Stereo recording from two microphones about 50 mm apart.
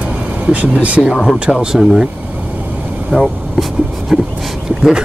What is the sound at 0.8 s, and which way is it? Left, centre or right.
Speech, right.